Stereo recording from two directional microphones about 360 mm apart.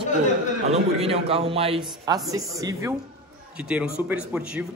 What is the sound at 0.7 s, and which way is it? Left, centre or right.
A man's voice, centre.